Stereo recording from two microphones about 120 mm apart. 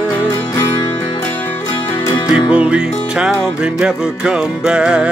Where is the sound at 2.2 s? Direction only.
40° left (ahead or behind).